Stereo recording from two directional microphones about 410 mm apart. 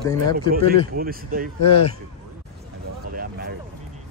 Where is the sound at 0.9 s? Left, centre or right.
Right.